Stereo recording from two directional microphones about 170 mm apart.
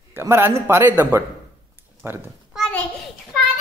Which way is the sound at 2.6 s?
10° left (ahead or behind).